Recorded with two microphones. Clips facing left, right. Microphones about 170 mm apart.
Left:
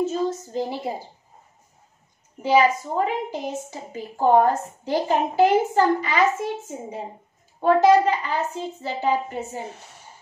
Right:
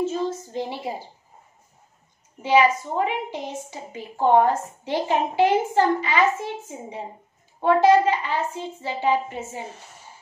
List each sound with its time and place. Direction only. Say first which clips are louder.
0.0 s a woman's voice: left 1 dB; 40° left (ahead or behind)
2.4 s a woman's voice: even; 40° left (ahead or behind)